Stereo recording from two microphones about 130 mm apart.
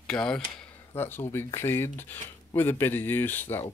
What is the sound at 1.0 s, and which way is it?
Speech, 15° left (ahead or behind).